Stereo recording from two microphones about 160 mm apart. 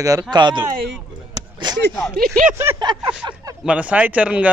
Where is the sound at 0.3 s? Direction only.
30° right (ahead or behind).